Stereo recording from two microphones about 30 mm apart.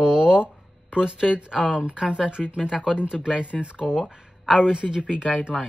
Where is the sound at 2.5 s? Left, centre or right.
Centre.